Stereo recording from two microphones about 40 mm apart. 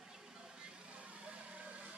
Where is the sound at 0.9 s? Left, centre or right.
Right.